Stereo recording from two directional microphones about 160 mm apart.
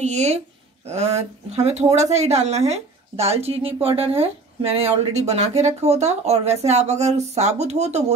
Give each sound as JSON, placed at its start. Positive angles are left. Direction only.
{"t": 0.0, "sound": "a woman's voice", "side_deg": -45}